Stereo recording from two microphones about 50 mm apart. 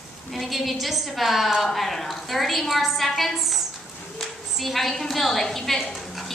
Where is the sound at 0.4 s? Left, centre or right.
Centre.